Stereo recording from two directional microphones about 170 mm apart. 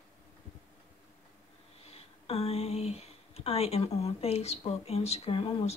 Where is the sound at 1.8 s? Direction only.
35° left (ahead or behind).